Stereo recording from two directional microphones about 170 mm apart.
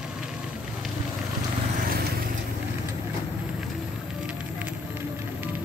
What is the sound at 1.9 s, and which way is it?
Vehicle, 70° right (ahead or behind).